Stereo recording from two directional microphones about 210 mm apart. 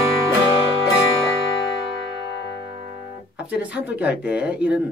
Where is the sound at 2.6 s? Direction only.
20° right (ahead or behind).